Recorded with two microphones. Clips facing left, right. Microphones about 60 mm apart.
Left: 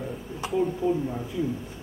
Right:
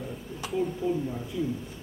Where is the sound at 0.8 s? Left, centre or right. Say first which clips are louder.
Left 3 dB; centre.